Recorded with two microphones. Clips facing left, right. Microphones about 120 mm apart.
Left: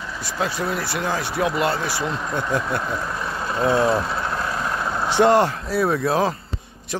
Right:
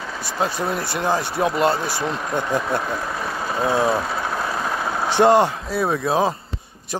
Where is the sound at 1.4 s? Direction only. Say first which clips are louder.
Right 2 dB; 35° right (ahead or behind).